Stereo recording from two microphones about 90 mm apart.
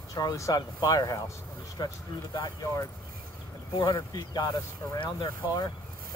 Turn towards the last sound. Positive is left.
turn(degrees=65)  # may be behind; listen again after turning